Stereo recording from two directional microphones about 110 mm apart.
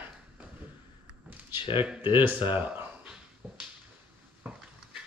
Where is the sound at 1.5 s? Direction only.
50° left (ahead or behind).